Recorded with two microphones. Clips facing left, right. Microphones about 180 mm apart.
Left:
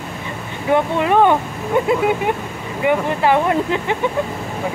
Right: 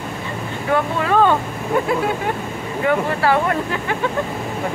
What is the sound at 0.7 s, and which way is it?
Speech, 20° left (ahead or behind).